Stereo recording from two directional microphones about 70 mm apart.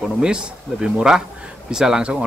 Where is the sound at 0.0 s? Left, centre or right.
Centre.